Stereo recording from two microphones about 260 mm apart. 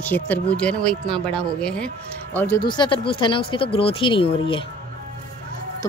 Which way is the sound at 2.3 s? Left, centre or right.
Centre.